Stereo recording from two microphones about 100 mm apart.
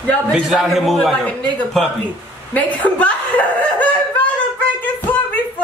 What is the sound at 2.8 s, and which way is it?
Speech, 15° left (ahead or behind).